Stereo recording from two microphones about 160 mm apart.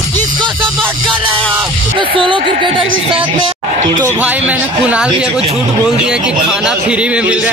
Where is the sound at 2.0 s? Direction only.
30° right (ahead or behind).